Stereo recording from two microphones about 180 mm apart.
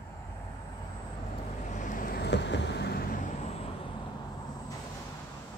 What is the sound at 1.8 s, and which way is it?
Vehicle, 45° left (ahead or behind).